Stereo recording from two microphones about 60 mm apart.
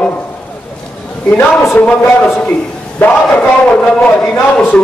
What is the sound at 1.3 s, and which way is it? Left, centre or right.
A man's voice, left.